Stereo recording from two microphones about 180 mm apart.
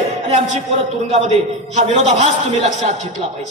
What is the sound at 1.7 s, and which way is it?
Speech, 40° right (ahead or behind).